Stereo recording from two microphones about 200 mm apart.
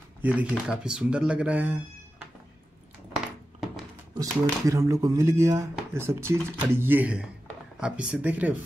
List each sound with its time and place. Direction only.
0.2 s speech: 10° right (ahead or behind)
3.6 s a sound: 5° right (ahead or behind)
4.2 s speech: 15° right (ahead or behind)